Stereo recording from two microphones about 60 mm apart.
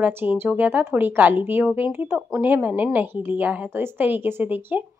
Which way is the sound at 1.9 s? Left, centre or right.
Right.